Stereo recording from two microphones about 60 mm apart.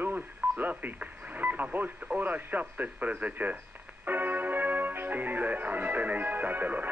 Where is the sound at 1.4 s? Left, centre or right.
Right.